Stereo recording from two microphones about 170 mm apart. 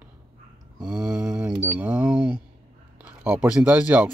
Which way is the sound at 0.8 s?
15° right (ahead or behind).